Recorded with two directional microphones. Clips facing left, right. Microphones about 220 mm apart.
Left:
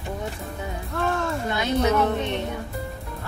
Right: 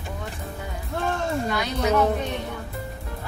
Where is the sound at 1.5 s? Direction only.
25° left (ahead or behind).